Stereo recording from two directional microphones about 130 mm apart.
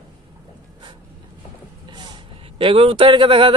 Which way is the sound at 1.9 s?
35° right (ahead or behind).